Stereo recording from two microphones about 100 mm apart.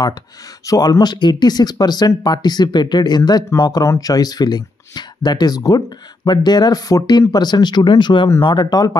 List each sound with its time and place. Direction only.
0.7 s speech: 40° left (ahead or behind)